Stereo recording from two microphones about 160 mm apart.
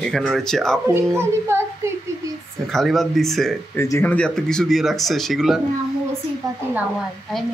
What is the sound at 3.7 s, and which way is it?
Speech, 15° left (ahead or behind).